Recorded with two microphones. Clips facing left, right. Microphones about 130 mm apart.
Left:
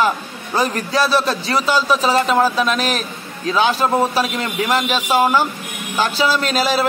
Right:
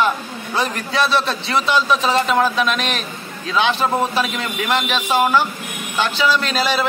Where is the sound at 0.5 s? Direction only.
40° left (ahead or behind).